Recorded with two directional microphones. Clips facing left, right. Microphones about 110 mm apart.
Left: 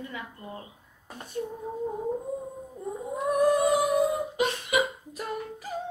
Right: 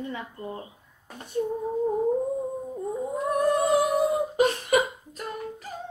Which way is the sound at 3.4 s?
10° left (ahead or behind).